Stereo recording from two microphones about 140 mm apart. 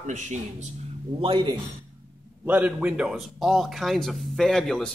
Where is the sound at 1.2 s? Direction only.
35° right (ahead or behind).